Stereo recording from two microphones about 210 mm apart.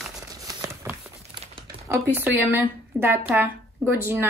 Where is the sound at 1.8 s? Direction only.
10° right (ahead or behind).